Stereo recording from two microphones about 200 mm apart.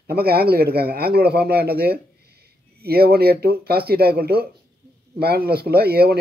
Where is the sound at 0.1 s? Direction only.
50° right (ahead or behind).